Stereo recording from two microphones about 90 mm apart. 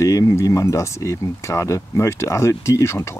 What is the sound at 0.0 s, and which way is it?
Speech, 35° left (ahead or behind).